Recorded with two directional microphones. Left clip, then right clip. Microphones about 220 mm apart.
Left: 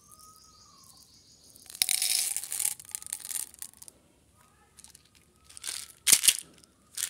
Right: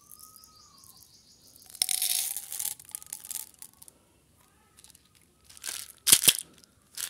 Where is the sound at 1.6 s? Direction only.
5° right (ahead or behind).